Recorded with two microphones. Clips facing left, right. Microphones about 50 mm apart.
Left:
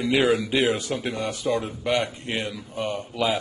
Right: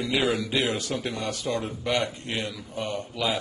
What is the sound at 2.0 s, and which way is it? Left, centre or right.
Speech, left.